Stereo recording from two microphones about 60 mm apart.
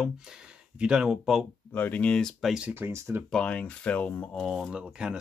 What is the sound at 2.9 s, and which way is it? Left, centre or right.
Speech, right.